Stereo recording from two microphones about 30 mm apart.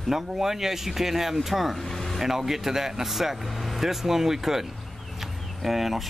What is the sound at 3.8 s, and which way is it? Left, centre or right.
Speech, centre.